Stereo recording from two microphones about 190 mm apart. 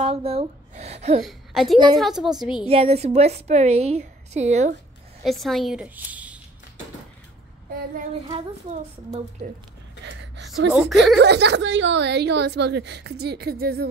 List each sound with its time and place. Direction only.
0.0 s a woman's voice: 30° right (ahead or behind)
1.2 s a woman's voice: centre (ahead or behind)
2.6 s a woman's voice: 30° right (ahead or behind)
5.2 s a woman's voice: centre (ahead or behind)
8.3 s a woman's voice: 30° right (ahead or behind)
10.0 s gasp: 70° right (ahead or behind)
10.7 s a woman's voice: centre (ahead or behind)
11.1 s a woman's voice: 60° right (ahead or behind)